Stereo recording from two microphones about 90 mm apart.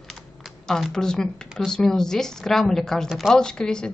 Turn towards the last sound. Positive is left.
turn(degrees=10)  # may be behind; listen again after turning